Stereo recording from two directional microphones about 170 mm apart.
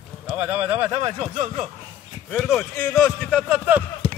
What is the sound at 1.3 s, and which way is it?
Speech, 40° right (ahead or behind).